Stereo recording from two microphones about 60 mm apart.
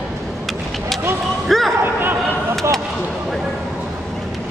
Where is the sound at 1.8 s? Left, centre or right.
Right.